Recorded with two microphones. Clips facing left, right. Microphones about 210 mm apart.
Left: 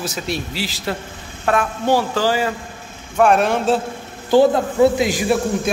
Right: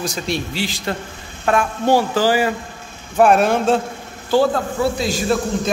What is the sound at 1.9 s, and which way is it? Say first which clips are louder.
Speech: right 2 dB; 30° right (ahead or behind).